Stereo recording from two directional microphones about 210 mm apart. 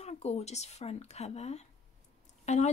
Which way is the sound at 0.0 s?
30° left (ahead or behind).